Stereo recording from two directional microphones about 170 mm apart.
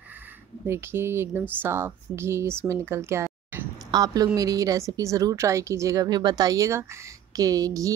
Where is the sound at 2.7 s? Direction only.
15° right (ahead or behind).